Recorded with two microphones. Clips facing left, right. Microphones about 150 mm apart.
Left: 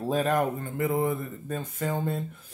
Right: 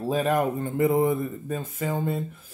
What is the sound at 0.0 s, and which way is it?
Speech, 5° right (ahead or behind).